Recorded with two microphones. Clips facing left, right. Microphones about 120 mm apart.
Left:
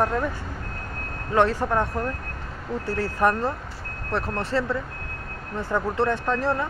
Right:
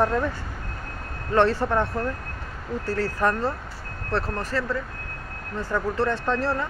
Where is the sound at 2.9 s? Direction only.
20° left (ahead or behind).